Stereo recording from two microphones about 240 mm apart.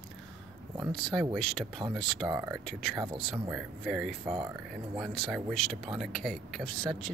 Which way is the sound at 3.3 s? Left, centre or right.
Centre.